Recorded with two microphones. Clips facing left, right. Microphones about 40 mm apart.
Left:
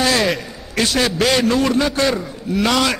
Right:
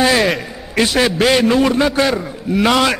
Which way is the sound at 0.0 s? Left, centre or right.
Centre.